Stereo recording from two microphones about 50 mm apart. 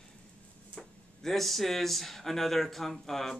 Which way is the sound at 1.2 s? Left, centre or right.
Centre.